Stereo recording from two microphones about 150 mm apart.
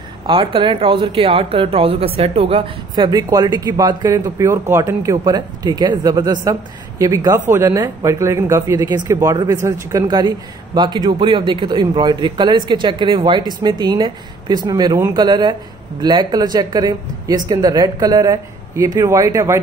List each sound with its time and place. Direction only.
0.3 s a man's voice: 35° right (ahead or behind); by 19.6 s 20° right (ahead or behind)